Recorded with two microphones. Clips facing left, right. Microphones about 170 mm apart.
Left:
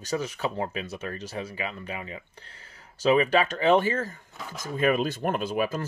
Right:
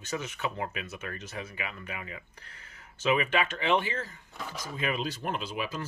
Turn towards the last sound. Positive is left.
turn(degrees=50)  # may be behind; listen again after turning